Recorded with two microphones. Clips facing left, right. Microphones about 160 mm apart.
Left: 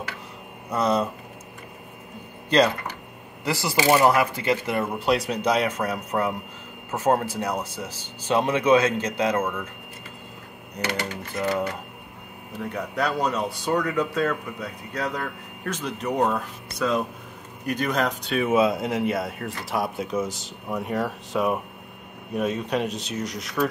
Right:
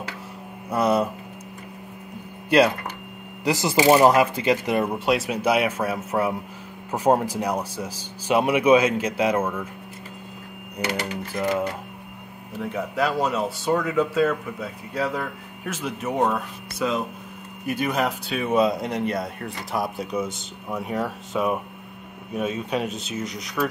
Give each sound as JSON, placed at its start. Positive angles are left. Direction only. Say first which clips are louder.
{"t": 0.7, "sound": "speech", "louder": "right 2 dB", "side_deg": -10}
{"t": 3.4, "sound": "speech", "louder": "right 4 dB", "side_deg": -20}
{"t": 4.9, "sound": "speech", "louder": "even", "side_deg": 0}
{"t": 10.9, "sound": "speech", "louder": "right 1 dB", "side_deg": -10}
{"t": 12.7, "sound": "speech", "louder": "right 2 dB", "side_deg": -5}